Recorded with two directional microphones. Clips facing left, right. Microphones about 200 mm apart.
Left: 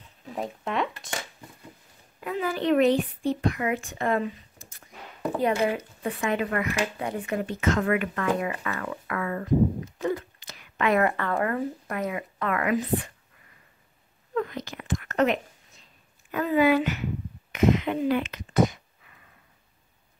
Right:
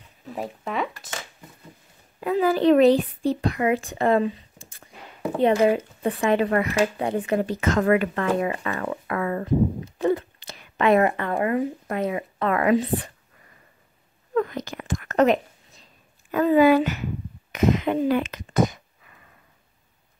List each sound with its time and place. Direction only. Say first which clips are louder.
0.3 s speech: right 1 dB; 5° right (ahead or behind)
2.1 s a child's voice: right 8 dB; 35° right (ahead or behind)
14.3 s whispering: right 5 dB; 45° right (ahead or behind)
16.3 s a child's voice: right 5 dB; 40° right (ahead or behind)